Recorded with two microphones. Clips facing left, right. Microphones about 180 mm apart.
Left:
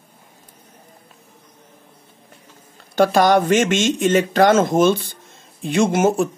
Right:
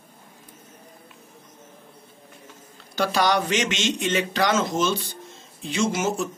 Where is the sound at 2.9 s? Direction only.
50° left (ahead or behind).